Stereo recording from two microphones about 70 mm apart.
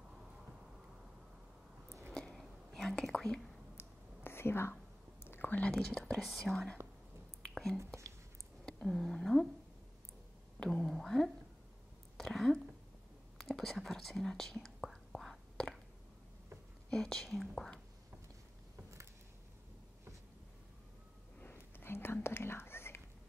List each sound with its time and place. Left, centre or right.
2.3 s whispering: centre
3.7 s whispering: left
5.7 s speech: centre
6.2 s speech: centre
7.5 s whispering: centre
8.6 s speech: centre
10.6 s speech: centre
12.2 s a sound: centre
13.4 s whispering: centre
16.9 s speech: centre
21.4 s whispering: left